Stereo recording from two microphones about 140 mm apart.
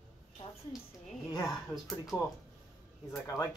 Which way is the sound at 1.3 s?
25° left (ahead or behind).